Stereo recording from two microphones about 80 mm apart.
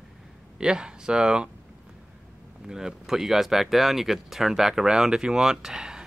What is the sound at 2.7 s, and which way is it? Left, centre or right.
Speech, centre.